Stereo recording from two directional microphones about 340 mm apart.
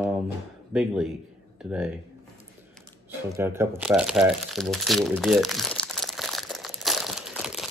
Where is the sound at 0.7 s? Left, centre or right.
Centre.